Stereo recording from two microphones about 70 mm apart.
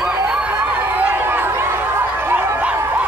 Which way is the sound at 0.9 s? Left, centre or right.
Right.